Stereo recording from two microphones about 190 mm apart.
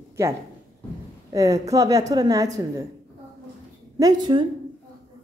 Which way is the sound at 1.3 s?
15° right (ahead or behind).